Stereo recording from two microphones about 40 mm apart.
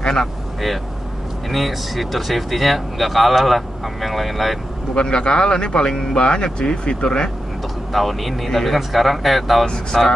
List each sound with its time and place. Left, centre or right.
0.0 s speech: centre
1.5 s speech: centre
4.9 s speech: left
7.9 s speech: centre